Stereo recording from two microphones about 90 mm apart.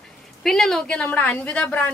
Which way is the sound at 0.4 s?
Centre (ahead or behind).